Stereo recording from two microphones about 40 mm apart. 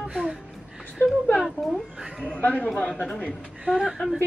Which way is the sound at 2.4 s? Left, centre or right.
Left.